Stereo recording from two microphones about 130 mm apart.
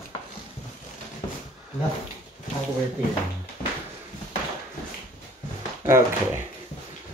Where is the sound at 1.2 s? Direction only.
40° left (ahead or behind).